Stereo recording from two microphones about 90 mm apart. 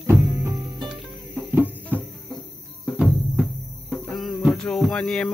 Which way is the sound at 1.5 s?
20° right (ahead or behind).